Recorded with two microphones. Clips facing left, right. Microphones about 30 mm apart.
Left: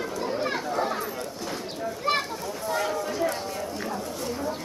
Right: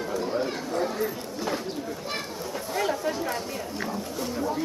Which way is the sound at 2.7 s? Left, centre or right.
Centre.